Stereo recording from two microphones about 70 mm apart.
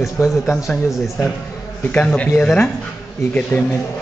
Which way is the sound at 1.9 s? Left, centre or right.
Centre.